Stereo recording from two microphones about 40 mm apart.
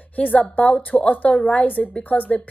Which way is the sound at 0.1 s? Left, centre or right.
Left.